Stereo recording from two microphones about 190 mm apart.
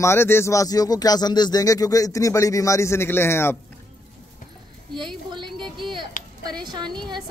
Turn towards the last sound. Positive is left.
turn(degrees=-25)  # may be behind; listen again after turning